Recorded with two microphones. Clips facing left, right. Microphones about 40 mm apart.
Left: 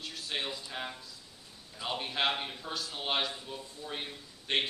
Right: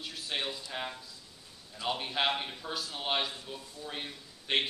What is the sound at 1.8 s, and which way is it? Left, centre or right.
A man's voice, centre.